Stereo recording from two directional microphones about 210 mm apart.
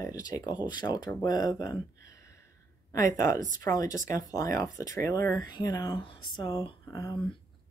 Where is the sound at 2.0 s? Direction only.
15° left (ahead or behind).